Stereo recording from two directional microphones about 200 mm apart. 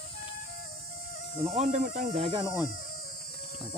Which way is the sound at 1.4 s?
30° right (ahead or behind).